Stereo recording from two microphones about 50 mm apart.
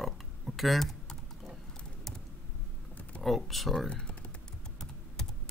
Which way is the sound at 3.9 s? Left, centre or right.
Left.